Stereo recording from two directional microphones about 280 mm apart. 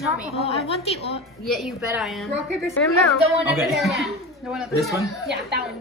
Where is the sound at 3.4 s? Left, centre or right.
Centre.